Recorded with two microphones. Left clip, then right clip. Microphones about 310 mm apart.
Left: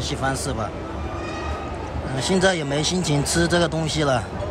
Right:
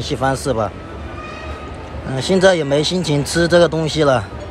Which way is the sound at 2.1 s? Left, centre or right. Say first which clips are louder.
Right 7 dB; centre.